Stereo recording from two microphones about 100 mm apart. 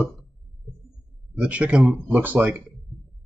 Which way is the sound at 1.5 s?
10° right (ahead or behind).